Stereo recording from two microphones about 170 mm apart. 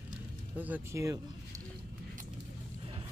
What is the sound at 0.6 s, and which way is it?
Speech, 15° right (ahead or behind).